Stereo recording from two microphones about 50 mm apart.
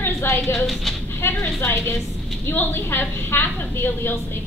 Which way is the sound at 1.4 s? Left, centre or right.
Left.